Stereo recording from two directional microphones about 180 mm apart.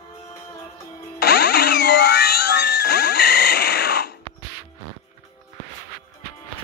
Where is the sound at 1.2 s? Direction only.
65° left (ahead or behind).